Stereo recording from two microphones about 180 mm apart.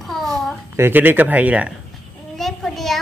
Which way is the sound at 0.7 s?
10° right (ahead or behind).